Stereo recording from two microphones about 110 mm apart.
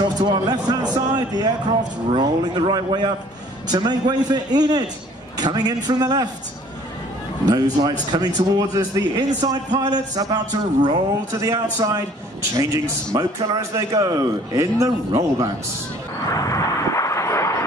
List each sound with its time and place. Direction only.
0.2 s speech: 40° right (ahead or behind)
7.4 s a man's voice: 40° right (ahead or behind)
16.3 s vehicle: 30° left (ahead or behind)